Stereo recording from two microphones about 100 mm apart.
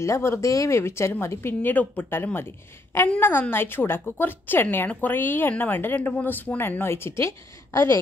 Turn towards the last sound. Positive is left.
turn(degrees=25)  # may be behind; listen again after turning